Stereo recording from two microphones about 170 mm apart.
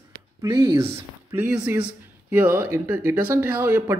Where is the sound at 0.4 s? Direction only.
25° right (ahead or behind).